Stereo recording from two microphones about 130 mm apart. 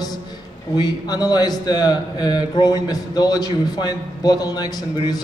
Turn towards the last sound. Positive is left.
turn(degrees=30)  # may be behind; listen again after turning